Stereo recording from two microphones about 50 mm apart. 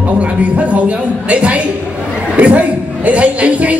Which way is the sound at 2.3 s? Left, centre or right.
Right.